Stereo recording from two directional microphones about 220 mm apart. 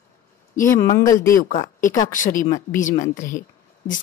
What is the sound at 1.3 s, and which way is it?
A woman's voice, 40° left (ahead or behind).